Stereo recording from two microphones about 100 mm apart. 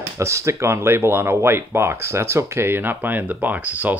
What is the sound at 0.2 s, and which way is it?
Speech, 30° right (ahead or behind).